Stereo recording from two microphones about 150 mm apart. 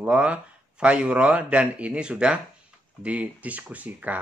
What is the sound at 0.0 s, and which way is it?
Speech, 10° right (ahead or behind).